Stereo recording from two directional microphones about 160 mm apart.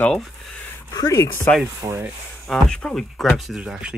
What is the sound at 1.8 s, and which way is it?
Speech, 15° right (ahead or behind).